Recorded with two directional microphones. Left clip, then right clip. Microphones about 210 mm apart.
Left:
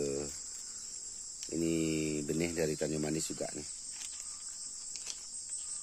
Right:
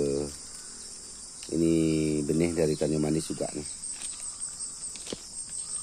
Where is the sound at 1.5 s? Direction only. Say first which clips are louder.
Right 8 dB; 5° left (ahead or behind).